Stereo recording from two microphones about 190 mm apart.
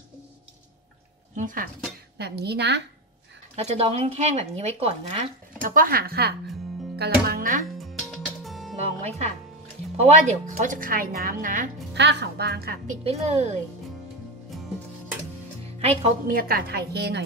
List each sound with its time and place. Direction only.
1.3 s speech: 45° right (ahead or behind)
2.1 s a woman's voice: 60° right (ahead or behind)
3.5 s speech: 35° right (ahead or behind)
5.6 s a woman's voice: 45° right (ahead or behind)
7.7 s music: centre (ahead or behind)
8.7 s a woman's voice: 35° right (ahead or behind)
11.9 s a woman's voice: 65° right (ahead or behind)
13.0 s speech: 35° right (ahead or behind)
14.5 s music: centre (ahead or behind)
15.8 s a woman's voice: 35° right (ahead or behind); by 17.2 s 60° right (ahead or behind)